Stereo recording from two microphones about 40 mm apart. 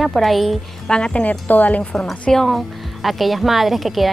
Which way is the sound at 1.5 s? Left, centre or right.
Left.